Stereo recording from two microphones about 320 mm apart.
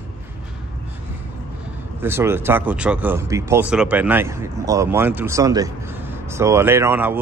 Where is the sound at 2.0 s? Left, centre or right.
Centre.